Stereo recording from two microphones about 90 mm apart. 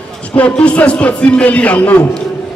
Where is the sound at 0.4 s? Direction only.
15° left (ahead or behind).